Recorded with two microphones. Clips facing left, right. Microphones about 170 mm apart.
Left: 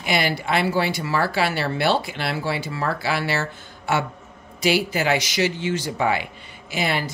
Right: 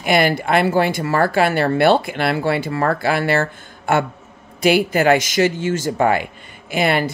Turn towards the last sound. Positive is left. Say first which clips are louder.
# right 6 dB
turn(degrees=-60)  # may be behind; listen again after turning